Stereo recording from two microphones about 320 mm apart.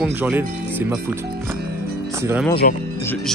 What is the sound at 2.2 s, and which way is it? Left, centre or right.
Speech, centre.